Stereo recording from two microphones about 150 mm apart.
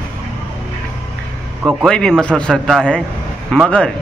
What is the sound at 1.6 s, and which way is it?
Speech, 10° right (ahead or behind).